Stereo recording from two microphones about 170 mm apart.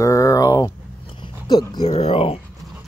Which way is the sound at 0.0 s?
20° left (ahead or behind).